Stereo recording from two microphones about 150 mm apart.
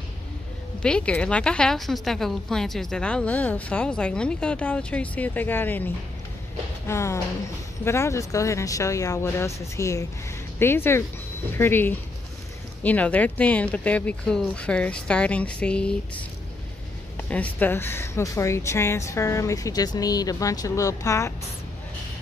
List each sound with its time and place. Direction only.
0.8 s a woman's voice: 5° left (ahead or behind)
6.9 s a woman's voice: 20° left (ahead or behind)